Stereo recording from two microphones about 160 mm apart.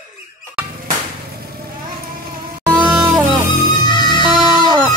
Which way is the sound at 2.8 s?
5° right (ahead or behind).